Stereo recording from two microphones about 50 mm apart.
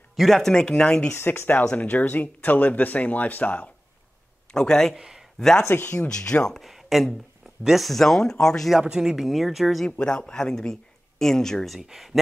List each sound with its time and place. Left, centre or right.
0.1 s speech: centre
1.1 s speech: left
1.6 s speech: centre
1.9 s speech: left
4.5 s speech: centre
4.9 s speech: centre
5.4 s speech: centre
6.5 s speech: centre
8.8 s speech: centre
9.8 s speech: centre
11.8 s speech: centre